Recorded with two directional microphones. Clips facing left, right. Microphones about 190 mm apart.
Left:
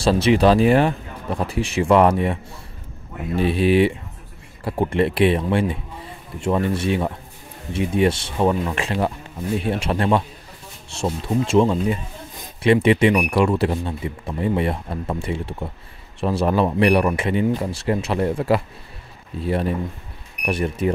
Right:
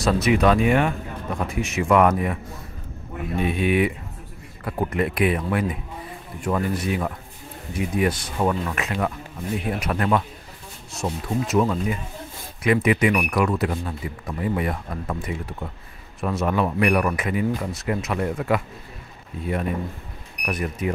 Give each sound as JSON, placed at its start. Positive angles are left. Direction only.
{"t": 0.0, "sound": "speech", "side_deg": 30}
{"t": 3.3, "sound": "speech", "side_deg": 30}
{"t": 11.2, "sound": "speech", "side_deg": 25}